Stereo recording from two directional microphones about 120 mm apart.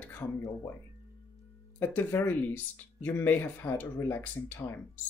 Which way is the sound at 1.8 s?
15° left (ahead or behind).